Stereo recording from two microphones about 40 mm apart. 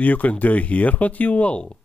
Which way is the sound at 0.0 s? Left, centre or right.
Left.